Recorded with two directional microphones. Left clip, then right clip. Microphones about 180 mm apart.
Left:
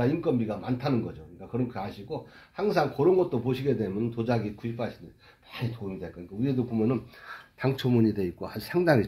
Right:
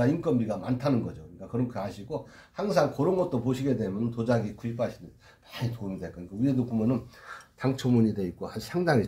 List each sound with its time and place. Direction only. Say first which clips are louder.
0.0 s speech: even; 15° left (ahead or behind)
7.2 s speech: left 1 dB; 25° left (ahead or behind)